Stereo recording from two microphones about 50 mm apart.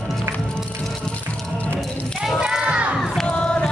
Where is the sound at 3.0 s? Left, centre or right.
Centre.